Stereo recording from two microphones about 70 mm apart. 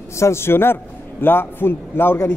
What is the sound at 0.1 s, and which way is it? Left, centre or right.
Speech, left.